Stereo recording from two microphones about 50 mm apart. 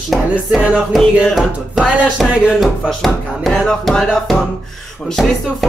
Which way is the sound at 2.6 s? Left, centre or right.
Centre.